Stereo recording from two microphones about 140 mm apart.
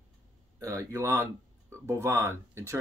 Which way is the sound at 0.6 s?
20° right (ahead or behind).